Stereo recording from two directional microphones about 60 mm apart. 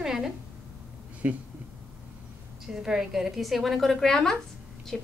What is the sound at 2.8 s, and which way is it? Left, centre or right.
A woman's voice, centre.